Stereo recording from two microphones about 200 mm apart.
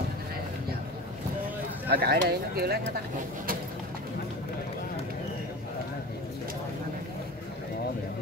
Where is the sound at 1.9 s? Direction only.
50° right (ahead or behind).